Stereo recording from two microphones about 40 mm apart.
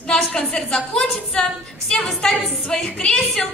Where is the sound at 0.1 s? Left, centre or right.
Left.